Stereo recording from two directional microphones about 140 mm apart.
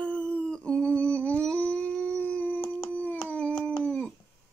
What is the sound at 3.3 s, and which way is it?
Howl, 10° left (ahead or behind).